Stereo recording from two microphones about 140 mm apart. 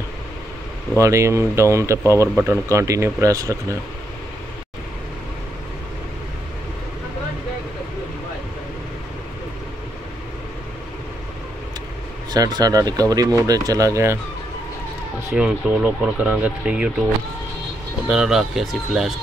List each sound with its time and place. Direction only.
0.9 s speech: 20° right (ahead or behind)
12.3 s speech: 30° right (ahead or behind)
15.3 s speech: 5° right (ahead or behind)
18.0 s speech: 5° right (ahead or behind)